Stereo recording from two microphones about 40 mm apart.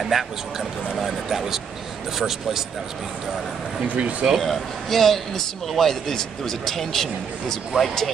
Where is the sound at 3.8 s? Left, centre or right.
Right.